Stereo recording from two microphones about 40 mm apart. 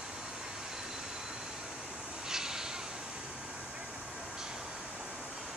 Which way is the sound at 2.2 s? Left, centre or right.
Centre.